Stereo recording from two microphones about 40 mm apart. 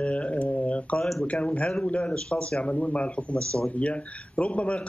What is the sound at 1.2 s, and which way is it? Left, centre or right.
A man's voice, left.